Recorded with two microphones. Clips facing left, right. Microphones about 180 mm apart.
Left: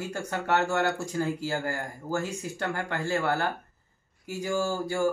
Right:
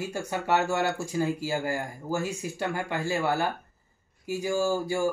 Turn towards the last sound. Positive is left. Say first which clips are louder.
# right 2 dB
turn(degrees=-10)  # may be behind; listen again after turning